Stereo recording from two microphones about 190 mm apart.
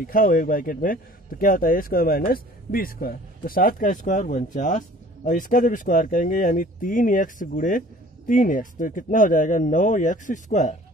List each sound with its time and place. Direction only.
0.0 s a man's voice: 45° left (ahead or behind)